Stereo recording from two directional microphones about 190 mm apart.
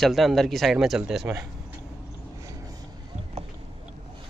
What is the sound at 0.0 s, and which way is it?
Speech, centre (ahead or behind).